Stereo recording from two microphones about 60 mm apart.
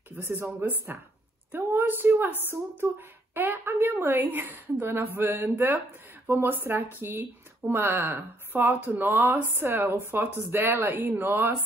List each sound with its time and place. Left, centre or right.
0.1 s speech: right
1.5 s a woman's voice: right